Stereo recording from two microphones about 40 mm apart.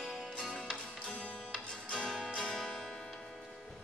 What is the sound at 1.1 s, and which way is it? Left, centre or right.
Music, left.